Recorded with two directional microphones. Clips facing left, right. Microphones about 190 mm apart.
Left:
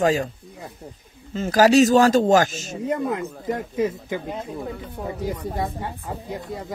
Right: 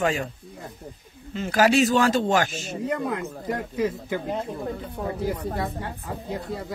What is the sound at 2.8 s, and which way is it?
Speech, 20° left (ahead or behind).